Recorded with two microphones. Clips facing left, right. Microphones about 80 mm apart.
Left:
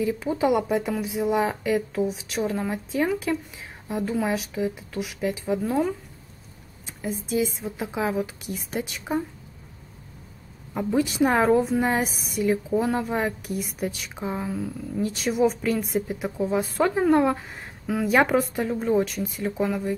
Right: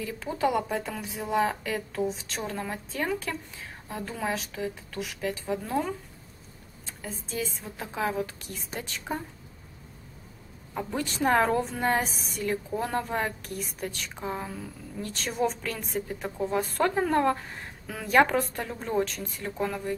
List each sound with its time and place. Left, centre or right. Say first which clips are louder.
0.0 s a woman's voice: left 5 dB; centre
7.0 s a woman's voice: left 9 dB; centre
10.7 s a woman's voice: left 8 dB; centre